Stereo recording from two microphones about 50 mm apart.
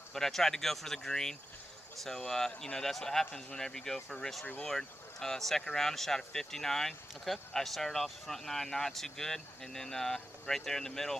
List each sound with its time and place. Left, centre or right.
0.1 s speech: centre
3.3 s speech: left
3.5 s speech: centre